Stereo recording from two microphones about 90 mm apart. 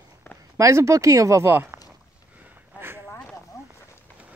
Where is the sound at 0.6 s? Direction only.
35° right (ahead or behind).